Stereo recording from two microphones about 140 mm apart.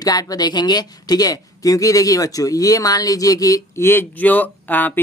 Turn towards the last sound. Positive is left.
turn(degrees=15)  # may be behind; listen again after turning